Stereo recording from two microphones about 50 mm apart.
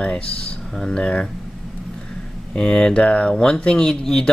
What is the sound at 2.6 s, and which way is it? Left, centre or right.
Speech, centre.